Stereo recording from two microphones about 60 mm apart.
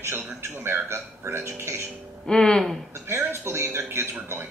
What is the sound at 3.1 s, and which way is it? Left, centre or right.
Speech, right.